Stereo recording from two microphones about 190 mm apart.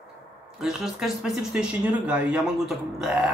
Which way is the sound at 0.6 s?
5° right (ahead or behind).